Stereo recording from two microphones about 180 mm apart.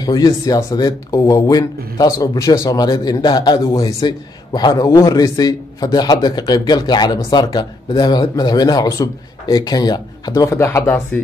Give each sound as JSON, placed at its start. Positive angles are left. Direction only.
{"t": 0.0, "sound": "speech", "side_deg": 20}